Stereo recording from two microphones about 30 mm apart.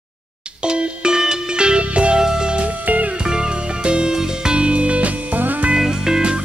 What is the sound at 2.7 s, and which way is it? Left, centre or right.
Music, right.